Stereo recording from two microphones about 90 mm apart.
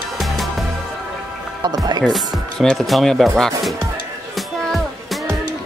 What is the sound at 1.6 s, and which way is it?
Music, 45° right (ahead or behind).